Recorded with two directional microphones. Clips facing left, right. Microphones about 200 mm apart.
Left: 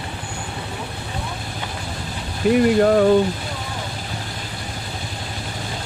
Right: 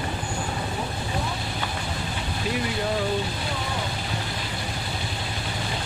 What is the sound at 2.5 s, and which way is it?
Speech, 60° left (ahead or behind).